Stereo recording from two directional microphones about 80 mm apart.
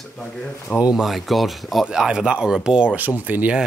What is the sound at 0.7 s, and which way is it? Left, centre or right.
Speech, centre.